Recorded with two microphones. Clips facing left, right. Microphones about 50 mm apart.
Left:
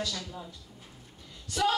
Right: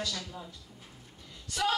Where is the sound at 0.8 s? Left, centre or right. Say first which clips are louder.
Left 1 dB; right.